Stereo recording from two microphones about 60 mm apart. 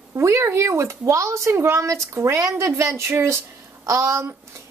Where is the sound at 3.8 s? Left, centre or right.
Right.